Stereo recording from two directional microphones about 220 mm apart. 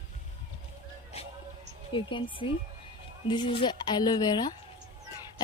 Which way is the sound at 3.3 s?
20° left (ahead or behind).